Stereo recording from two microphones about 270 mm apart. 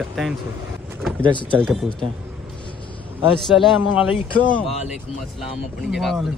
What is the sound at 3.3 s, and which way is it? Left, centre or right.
Speech, centre.